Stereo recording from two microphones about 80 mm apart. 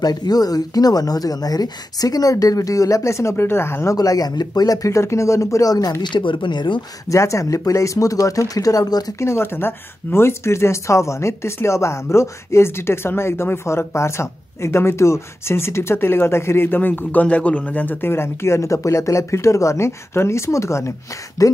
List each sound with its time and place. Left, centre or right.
0.0 s speech: left
3.9 s speech: left
7.1 s speech: left
9.2 s speech: left